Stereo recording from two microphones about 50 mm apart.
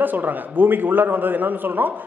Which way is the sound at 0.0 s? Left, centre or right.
Right.